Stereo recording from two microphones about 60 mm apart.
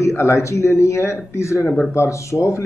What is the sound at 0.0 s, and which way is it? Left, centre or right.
Speech, left.